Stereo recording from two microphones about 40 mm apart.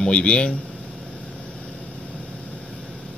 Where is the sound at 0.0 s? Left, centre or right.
Left.